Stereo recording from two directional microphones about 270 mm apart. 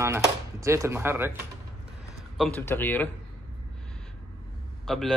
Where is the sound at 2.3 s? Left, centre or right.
Centre.